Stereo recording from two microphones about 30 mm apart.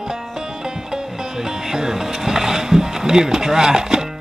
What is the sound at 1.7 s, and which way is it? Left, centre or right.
Music, centre.